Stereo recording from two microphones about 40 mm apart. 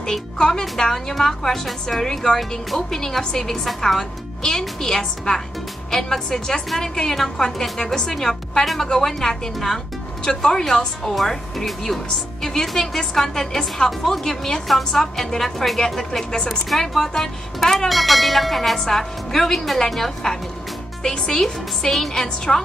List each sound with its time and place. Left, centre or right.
0.4 s speech: centre
21.4 s speech: centre